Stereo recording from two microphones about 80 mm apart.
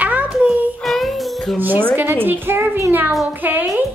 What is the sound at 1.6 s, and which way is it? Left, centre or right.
A child's voice, right.